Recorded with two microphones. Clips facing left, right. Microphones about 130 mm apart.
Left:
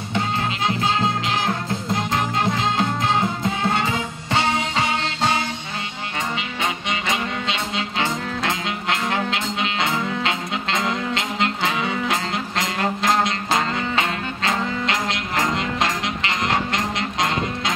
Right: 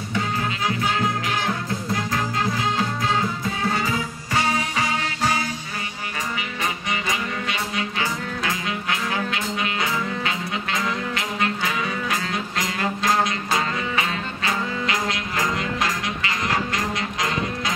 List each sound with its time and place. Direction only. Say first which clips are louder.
0.1 s music: left 2 dB; 25° left (ahead or behind)
6.9 s music: left 2 dB; 25° left (ahead or behind)